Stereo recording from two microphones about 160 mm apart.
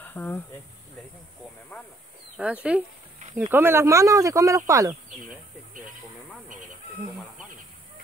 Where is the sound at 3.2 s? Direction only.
45° right (ahead or behind).